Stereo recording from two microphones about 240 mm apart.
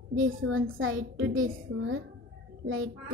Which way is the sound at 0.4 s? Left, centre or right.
Right.